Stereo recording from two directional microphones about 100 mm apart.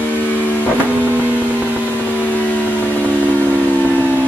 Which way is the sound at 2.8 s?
15° left (ahead or behind).